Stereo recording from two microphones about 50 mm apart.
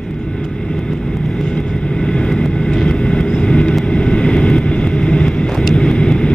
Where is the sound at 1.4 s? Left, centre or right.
Centre.